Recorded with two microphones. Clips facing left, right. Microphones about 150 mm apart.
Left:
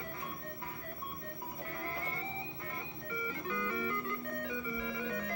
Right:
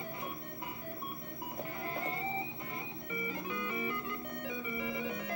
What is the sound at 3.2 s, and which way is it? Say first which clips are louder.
Music: left 1 dB; 15° right (ahead or behind).